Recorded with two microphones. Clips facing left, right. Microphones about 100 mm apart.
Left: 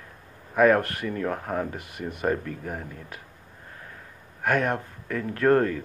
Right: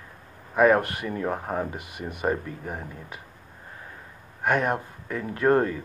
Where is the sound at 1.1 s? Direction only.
15° right (ahead or behind).